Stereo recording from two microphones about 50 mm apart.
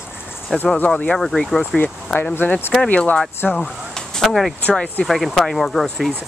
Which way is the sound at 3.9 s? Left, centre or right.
Centre.